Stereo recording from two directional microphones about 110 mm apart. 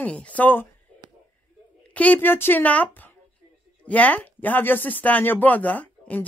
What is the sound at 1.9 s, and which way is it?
Speech, 15° left (ahead or behind).